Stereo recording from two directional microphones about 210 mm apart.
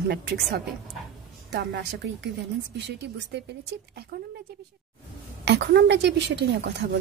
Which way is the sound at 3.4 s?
55° right (ahead or behind).